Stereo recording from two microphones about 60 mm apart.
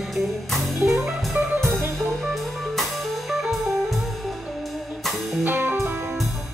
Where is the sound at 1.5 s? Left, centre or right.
Right.